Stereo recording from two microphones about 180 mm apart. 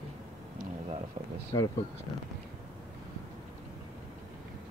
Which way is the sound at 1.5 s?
25° left (ahead or behind).